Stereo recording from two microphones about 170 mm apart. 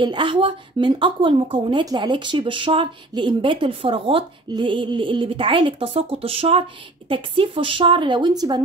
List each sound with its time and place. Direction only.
0.0 s a woman's voice: 30° right (ahead or behind)